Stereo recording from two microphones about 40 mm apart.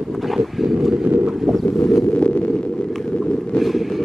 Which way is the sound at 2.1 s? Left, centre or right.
Left.